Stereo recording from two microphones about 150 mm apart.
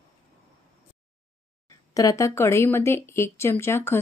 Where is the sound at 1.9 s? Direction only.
20° left (ahead or behind).